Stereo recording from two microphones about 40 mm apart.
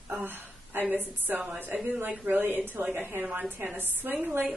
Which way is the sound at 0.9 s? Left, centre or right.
Right.